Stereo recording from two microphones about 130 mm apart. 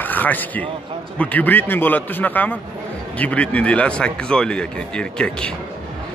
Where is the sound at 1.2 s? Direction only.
10° left (ahead or behind).